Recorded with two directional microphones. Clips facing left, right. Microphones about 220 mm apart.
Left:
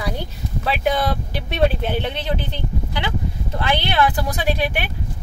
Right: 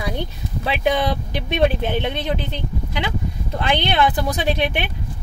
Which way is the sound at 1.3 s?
20° right (ahead or behind).